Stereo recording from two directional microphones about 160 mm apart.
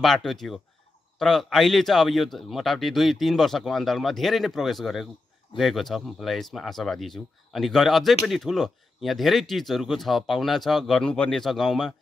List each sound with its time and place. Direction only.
0.0 s a man's voice: centre (ahead or behind)